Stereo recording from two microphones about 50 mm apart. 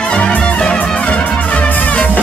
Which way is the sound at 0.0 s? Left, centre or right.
Centre.